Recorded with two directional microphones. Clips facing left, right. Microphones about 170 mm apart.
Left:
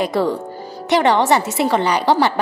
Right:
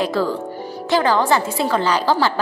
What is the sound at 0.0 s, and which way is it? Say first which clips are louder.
A woman's voice: left 2 dB; 20° left (ahead or behind).